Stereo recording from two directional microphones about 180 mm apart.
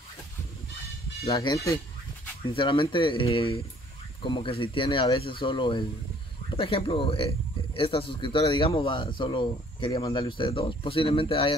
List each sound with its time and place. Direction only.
1.3 s speech: 20° left (ahead or behind)